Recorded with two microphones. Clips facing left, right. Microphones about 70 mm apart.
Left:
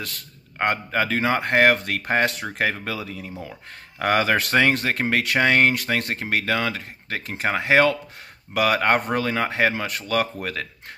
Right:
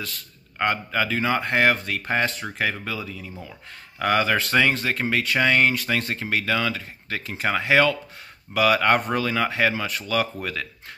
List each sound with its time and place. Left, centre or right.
0.6 s speech: left
2.4 s speech: left
2.8 s speech: left
7.4 s speech: left
8.5 s speech: left